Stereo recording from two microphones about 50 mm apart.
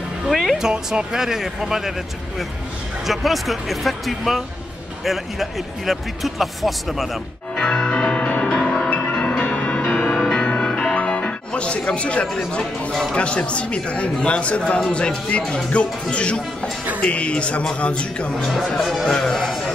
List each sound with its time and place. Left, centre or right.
0.3 s music: centre
0.6 s speech: centre
7.5 s music: centre
9.4 s music: left
12.4 s speech: centre
18.7 s a man's voice: centre